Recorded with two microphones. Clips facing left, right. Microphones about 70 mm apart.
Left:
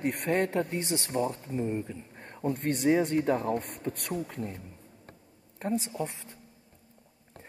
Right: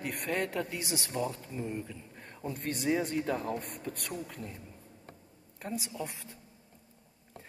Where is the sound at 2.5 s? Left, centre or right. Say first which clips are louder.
Left 6 dB; left.